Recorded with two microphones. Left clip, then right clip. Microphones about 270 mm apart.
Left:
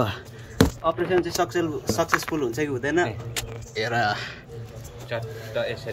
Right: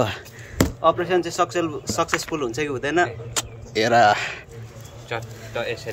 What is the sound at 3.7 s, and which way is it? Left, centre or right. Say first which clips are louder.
Speech: right 8 dB; right.